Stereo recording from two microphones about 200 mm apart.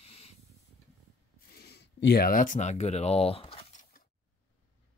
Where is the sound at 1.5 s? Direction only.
55° left (ahead or behind); by 3.8 s 30° left (ahead or behind).